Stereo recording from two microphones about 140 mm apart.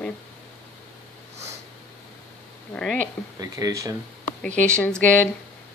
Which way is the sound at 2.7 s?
5° left (ahead or behind).